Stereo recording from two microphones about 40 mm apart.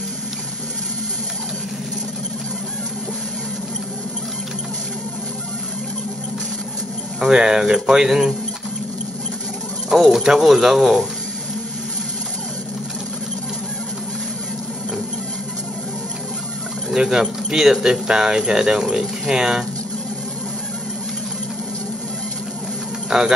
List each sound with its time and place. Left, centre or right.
7.2 s speech: centre
9.9 s speech: centre
16.9 s speech: centre
23.0 s insect: centre